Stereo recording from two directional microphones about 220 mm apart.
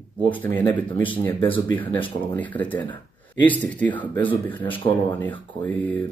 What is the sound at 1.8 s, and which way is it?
Speech, 25° left (ahead or behind).